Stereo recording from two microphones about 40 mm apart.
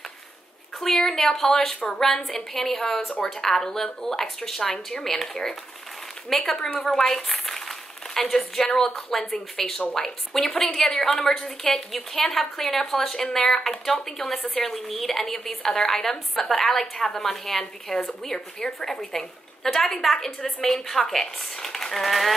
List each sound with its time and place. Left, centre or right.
0.7 s a woman's voice: centre
6.8 s a sound: centre
8.9 s a woman's voice: centre